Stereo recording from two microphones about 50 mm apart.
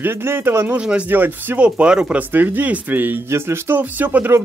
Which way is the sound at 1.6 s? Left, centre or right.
Centre.